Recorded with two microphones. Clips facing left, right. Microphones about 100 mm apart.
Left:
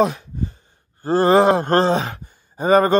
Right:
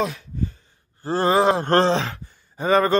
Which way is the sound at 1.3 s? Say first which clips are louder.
Left 4 dB; 40° left (ahead or behind).